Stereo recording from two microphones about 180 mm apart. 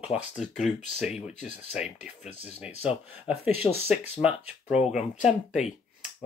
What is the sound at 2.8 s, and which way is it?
Speech, 10° right (ahead or behind).